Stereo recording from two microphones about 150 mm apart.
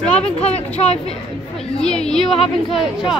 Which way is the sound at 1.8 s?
5° left (ahead or behind).